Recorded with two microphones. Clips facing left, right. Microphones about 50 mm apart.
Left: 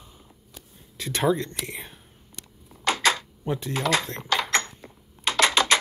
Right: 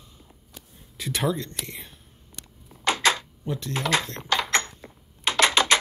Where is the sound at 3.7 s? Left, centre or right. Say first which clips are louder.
Even; right.